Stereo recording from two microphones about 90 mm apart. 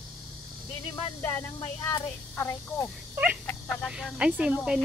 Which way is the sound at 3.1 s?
15° right (ahead or behind).